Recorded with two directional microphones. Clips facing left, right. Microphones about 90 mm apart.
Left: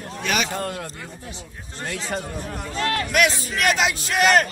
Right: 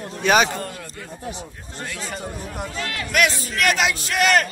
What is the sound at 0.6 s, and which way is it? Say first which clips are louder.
Speech: left 4 dB; 65° left (ahead or behind).